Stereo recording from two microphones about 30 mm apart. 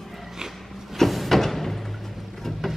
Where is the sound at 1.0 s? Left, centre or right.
Centre.